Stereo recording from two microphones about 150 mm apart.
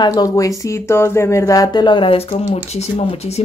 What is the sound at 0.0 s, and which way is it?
Speech, 25° left (ahead or behind).